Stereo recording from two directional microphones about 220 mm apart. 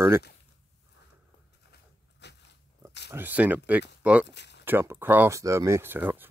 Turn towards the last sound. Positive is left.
turn(degrees=-10)  # may be behind; listen again after turning